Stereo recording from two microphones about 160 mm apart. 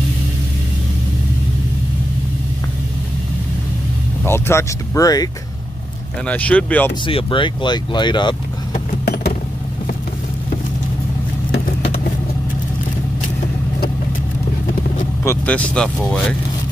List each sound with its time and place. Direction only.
4.2 s speech: 15° left (ahead or behind)
6.2 s speech: 10° left (ahead or behind)
7.1 s speech: 35° left (ahead or behind)
9.0 s vehicle: 85° left
15.2 s speech: 10° left (ahead or behind)